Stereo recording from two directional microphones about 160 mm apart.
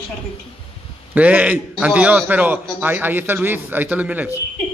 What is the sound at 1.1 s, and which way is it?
A man's voice, 10° right (ahead or behind).